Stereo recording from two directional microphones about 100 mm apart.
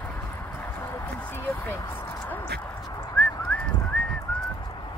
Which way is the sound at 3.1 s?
15° left (ahead or behind).